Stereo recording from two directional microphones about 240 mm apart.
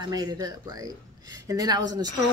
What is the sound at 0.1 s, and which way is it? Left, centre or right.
A woman's voice, centre.